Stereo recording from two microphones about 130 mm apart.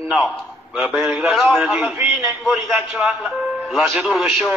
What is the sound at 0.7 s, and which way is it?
A man's voice, 5° right (ahead or behind).